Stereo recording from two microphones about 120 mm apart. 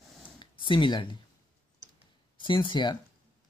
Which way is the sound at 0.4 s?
40° left (ahead or behind).